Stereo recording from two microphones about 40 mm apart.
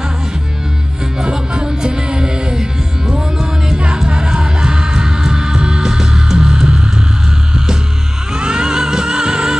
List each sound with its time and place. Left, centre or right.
1.2 s music: right